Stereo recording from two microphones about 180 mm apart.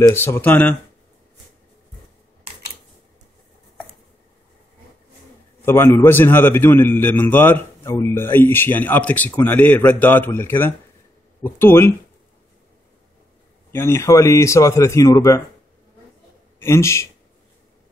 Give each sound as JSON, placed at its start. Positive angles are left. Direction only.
{"t": 0.0, "sound": "a man's voice", "side_deg": 15}
{"t": 5.7, "sound": "a man's voice", "side_deg": 15}
{"t": 13.7, "sound": "a man's voice", "side_deg": 15}
{"t": 16.5, "sound": "a man's voice", "side_deg": 15}